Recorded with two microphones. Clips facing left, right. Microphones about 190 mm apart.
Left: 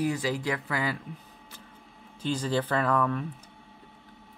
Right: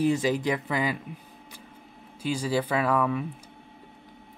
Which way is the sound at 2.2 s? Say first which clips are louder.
Right 1 dB; 10° right (ahead or behind).